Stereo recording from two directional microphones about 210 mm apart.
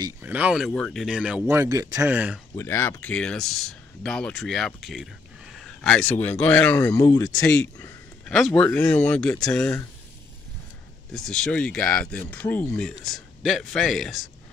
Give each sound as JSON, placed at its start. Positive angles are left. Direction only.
{"t": 0.0, "sound": "speech", "side_deg": -10}
{"t": 0.7, "sound": "speech", "side_deg": 5}
{"t": 2.5, "sound": "speech", "side_deg": 10}
{"t": 11.1, "sound": "speech", "side_deg": 5}